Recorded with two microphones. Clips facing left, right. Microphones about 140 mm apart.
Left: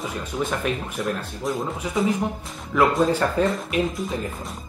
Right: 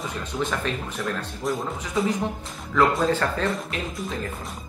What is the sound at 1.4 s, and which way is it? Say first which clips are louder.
Speech: left 1 dB; centre (ahead or behind).